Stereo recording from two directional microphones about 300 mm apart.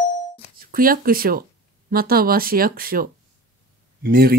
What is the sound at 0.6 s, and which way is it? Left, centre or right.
Speech, right.